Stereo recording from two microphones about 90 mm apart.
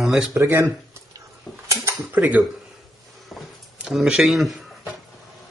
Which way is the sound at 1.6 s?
35° right (ahead or behind).